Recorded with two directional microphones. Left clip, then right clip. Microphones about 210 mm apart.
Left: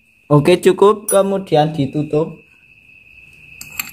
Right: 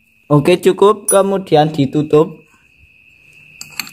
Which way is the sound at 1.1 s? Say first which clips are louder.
Right 2 dB; 25° right (ahead or behind).